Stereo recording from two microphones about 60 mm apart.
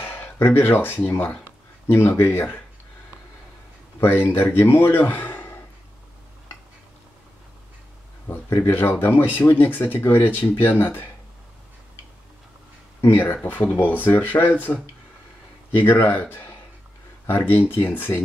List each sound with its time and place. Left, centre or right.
0.0 s speech: left
1.9 s speech: left
2.2 s speech: left
4.0 s speech: left
8.3 s speech: left
13.1 s speech: left
15.8 s speech: left